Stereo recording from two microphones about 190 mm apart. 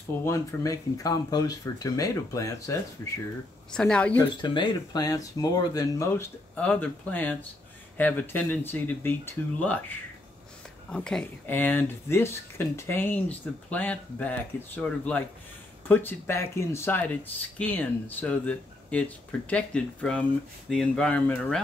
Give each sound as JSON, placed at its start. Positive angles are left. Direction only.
{"t": 0.2, "sound": "speech", "side_deg": 15}
{"t": 3.7, "sound": "speech", "side_deg": 5}
{"t": 4.4, "sound": "speech", "side_deg": 25}